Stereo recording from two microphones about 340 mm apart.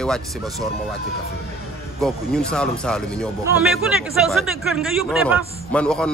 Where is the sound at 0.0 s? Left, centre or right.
Centre.